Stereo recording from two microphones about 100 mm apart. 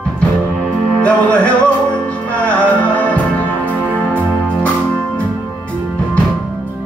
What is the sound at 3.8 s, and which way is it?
Music, 15° right (ahead or behind).